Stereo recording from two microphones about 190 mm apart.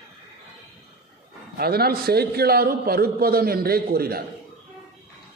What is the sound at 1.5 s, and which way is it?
A man's voice, 55° right (ahead or behind).